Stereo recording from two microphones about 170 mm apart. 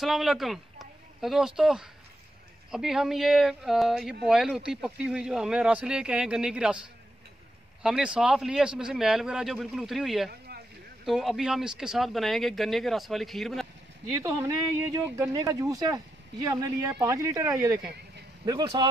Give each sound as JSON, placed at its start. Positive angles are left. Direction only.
{"t": 0.0, "sound": "speech", "side_deg": 0}
{"t": 7.8, "sound": "speech", "side_deg": -5}
{"t": 15.1, "sound": "speech", "side_deg": -15}
{"t": 18.4, "sound": "speech", "side_deg": -25}